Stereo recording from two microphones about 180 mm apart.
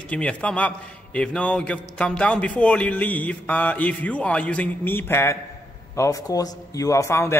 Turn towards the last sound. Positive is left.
turn(degrees=15)  # may be behind; listen again after turning